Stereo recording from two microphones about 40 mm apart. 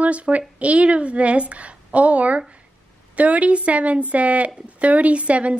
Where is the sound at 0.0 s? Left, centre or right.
Right.